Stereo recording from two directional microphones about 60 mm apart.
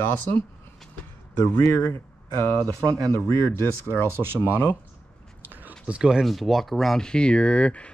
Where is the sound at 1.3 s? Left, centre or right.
Left.